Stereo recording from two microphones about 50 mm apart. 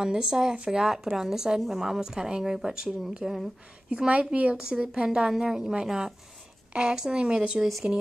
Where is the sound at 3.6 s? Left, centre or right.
Right.